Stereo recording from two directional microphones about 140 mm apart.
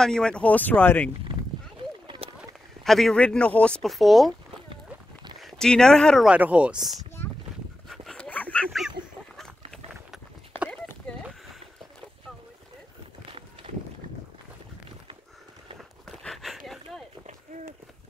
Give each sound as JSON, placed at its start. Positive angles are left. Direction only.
{"t": 0.0, "sound": "speech", "side_deg": 5}
{"t": 2.0, "sound": "a sound", "side_deg": -40}
{"t": 2.8, "sound": "speech", "side_deg": 0}
{"t": 5.4, "sound": "speech", "side_deg": 5}
{"t": 6.3, "sound": "speech", "side_deg": -10}
{"t": 7.9, "sound": "dog", "side_deg": 5}
{"t": 10.7, "sound": "clip-clop", "side_deg": 5}
{"t": 16.1, "sound": "a sound", "side_deg": 0}